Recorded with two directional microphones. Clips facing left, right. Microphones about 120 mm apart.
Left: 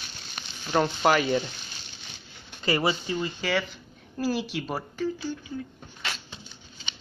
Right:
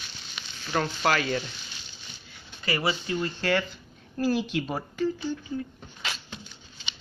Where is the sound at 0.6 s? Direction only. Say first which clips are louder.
Left 3 dB; 20° left (ahead or behind).